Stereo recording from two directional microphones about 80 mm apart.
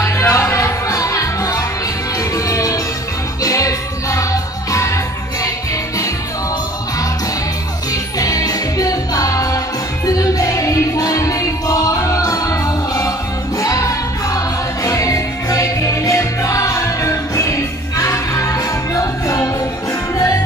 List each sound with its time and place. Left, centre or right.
0.0 s music: left
7.9 s music: left